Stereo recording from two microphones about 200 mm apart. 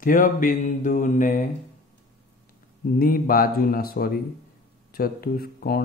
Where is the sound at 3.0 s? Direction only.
45° left (ahead or behind).